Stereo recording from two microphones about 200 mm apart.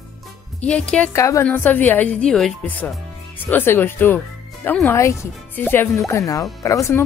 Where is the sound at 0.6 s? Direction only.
5° left (ahead or behind).